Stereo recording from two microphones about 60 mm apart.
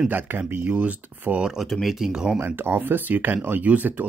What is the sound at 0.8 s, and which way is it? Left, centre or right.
Speech, right.